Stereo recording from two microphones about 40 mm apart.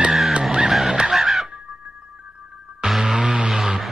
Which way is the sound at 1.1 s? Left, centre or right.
Centre.